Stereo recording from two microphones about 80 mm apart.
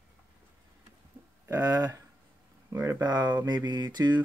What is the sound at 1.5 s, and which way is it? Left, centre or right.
Speech, right.